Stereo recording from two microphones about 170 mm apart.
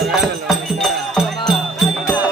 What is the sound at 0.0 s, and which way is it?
Music, centre (ahead or behind).